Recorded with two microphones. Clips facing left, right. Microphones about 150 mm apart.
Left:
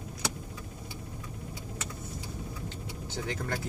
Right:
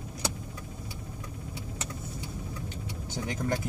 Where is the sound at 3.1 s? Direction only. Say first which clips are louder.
Right 3 dB; 15° right (ahead or behind).